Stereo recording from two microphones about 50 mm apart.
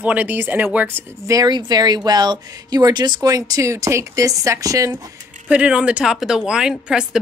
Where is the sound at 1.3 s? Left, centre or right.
Right.